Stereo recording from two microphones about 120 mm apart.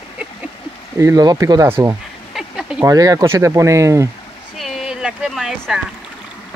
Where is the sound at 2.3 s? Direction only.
Centre (ahead or behind).